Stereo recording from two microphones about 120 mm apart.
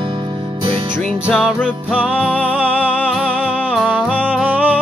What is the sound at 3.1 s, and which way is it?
Music, 10° right (ahead or behind).